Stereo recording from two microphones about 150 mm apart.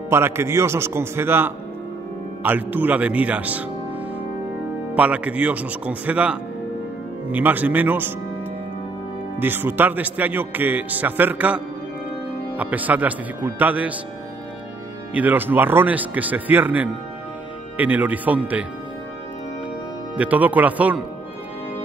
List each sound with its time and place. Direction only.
0.1 s a man's voice: 15° right (ahead or behind)
4.9 s a man's voice: 10° right (ahead or behind)
9.4 s a man's voice: 15° right (ahead or behind)
15.1 s a man's voice: 10° right (ahead or behind)
20.2 s a man's voice: 10° right (ahead or behind)